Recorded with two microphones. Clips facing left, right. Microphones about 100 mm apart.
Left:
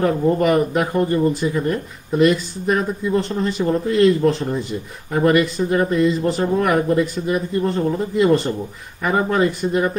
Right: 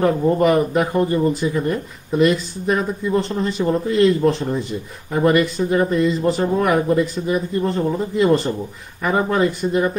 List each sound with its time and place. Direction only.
0.0 s speech: centre (ahead or behind)
1.0 s speech: 25° right (ahead or behind)
1.3 s speech: centre (ahead or behind)